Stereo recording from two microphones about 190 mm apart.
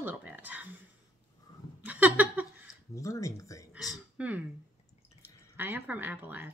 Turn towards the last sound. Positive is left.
turn(degrees=-10)  # may be behind; listen again after turning